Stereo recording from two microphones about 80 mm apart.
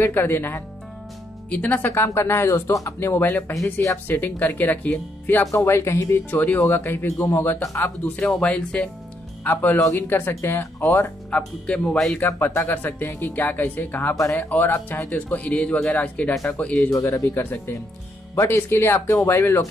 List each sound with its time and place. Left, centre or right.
0.0 s speech: left
3.0 s speech: left
5.5 s speech: left
6.3 s speech: left
7.2 s speech: left
7.7 s speech: left
8.2 s a man's voice: centre
9.4 s speech: left
11.2 s a man's voice: centre
12.4 s a man's voice: left
16.9 s speech: left